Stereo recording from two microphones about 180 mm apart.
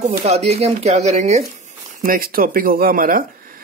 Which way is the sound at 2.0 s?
55° right (ahead or behind).